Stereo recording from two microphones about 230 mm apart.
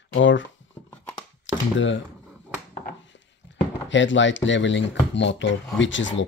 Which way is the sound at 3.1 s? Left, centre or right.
Left.